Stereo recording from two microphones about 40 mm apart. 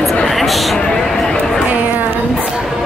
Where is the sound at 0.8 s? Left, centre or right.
Centre.